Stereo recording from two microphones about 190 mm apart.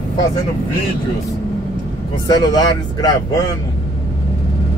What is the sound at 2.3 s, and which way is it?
Speech, 20° left (ahead or behind).